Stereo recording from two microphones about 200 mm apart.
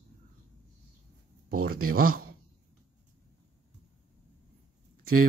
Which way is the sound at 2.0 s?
90° right.